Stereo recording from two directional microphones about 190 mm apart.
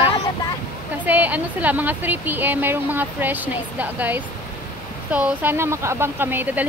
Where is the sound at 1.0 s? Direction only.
10° right (ahead or behind).